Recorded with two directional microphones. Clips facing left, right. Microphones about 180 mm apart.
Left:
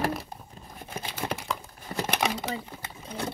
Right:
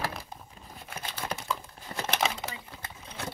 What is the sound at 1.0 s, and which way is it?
Computer keyboard, 15° left (ahead or behind).